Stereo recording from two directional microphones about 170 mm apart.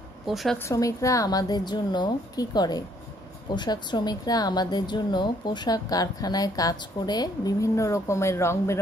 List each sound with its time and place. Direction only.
0.3 s speech: centre (ahead or behind)
0.7 s a woman's voice: 20° left (ahead or behind)